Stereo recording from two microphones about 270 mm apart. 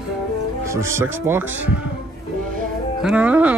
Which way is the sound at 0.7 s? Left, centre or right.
Centre.